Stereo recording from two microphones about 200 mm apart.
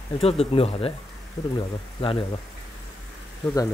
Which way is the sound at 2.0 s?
30° left (ahead or behind).